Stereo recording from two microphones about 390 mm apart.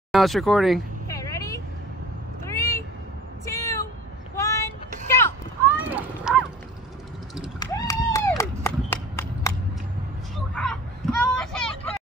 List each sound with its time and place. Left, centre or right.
0.1 s vehicle: centre
3.4 s a sound: centre
4.4 s vehicle: centre
5.8 s a sound: centre
7.6 s clapping: centre
10.5 s vehicle: centre